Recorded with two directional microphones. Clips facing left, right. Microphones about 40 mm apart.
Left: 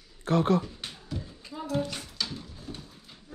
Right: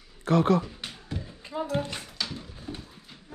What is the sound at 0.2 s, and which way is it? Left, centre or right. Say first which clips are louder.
Speech: right 2 dB; right.